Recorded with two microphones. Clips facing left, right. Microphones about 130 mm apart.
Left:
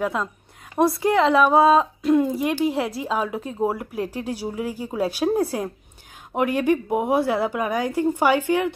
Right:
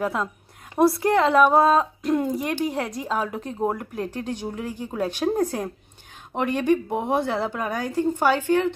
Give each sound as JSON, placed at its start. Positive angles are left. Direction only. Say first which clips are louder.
{"t": 0.0, "sound": "speech", "louder": "left 1 dB", "side_deg": 0}